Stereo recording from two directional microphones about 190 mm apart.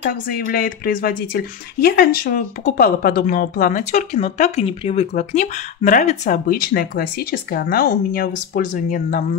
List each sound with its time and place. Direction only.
0.0 s speech: 55° left (ahead or behind)